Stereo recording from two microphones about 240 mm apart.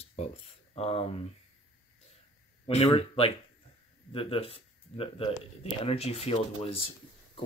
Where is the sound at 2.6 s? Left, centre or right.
Left.